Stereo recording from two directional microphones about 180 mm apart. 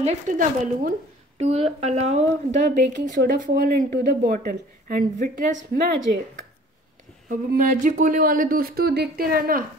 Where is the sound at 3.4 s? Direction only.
55° right (ahead or behind).